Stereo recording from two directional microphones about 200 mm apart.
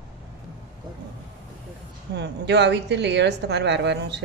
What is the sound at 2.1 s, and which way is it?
A woman's voice, 55° right (ahead or behind).